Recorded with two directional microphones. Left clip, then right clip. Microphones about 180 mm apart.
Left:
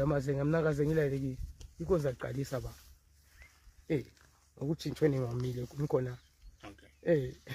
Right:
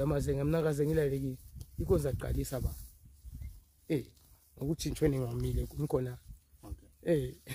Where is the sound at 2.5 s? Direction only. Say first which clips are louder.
Left 1 dB; 30° right (ahead or behind).